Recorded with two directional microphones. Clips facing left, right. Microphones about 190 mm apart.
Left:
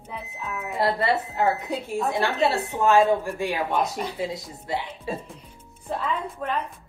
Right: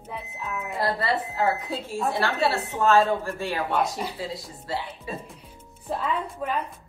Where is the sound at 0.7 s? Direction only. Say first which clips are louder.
Left 3 dB; 25° left (ahead or behind).